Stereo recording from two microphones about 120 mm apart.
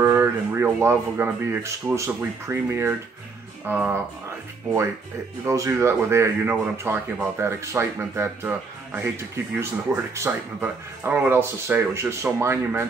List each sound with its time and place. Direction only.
0.0 s speech: 20° right (ahead or behind)
3.6 s speech: 10° right (ahead or behind)
5.5 s speech: 25° right (ahead or behind)